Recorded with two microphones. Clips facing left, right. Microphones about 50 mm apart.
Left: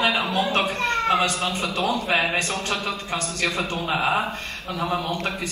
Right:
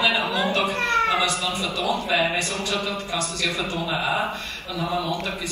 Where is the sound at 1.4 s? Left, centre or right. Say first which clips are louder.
Left 1 dB; left.